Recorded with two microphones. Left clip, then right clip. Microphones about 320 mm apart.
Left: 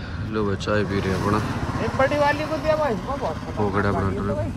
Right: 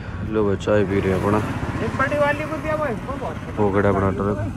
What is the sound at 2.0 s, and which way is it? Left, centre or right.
Speech, left.